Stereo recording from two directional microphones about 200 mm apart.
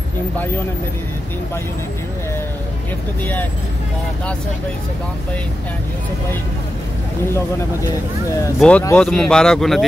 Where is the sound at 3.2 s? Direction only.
10° left (ahead or behind).